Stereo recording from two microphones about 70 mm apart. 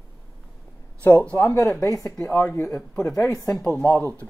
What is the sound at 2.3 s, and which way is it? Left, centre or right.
Speech, left.